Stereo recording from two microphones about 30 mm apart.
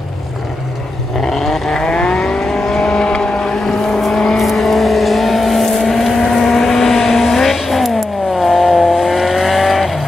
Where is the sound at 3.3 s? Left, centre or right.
Centre.